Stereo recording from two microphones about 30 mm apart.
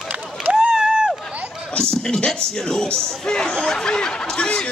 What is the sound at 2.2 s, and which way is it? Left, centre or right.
Music, left.